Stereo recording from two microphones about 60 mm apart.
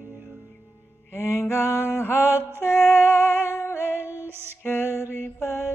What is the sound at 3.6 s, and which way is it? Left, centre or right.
Singing, left.